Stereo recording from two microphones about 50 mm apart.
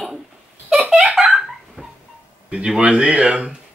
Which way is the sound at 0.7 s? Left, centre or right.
Centre.